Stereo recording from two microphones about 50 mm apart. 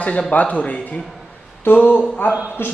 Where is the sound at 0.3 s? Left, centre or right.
Left.